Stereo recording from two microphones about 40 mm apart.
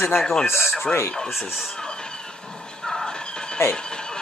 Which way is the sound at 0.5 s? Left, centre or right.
Left.